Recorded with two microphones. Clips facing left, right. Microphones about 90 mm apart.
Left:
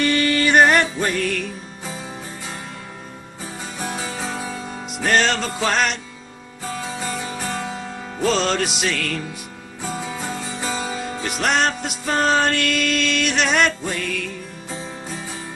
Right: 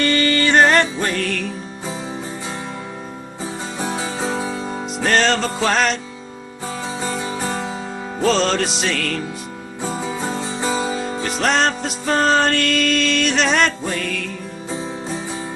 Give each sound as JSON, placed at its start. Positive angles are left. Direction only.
{"t": 0.0, "sound": "music", "side_deg": 10}
{"t": 3.8, "sound": "music", "side_deg": -30}
{"t": 5.0, "sound": "music", "side_deg": 5}
{"t": 7.1, "sound": "music", "side_deg": -25}
{"t": 8.2, "sound": "music", "side_deg": 5}
{"t": 9.8, "sound": "music", "side_deg": -30}
{"t": 11.2, "sound": "music", "side_deg": 5}